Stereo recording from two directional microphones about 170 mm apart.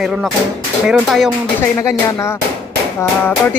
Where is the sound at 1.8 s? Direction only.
15° left (ahead or behind).